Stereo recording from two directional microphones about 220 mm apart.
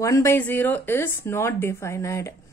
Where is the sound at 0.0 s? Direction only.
15° left (ahead or behind).